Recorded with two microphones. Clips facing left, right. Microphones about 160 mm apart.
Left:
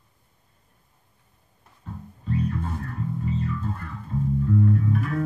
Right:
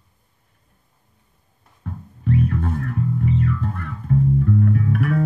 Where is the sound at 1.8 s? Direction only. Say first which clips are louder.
Right 8 dB; 70° right (ahead or behind).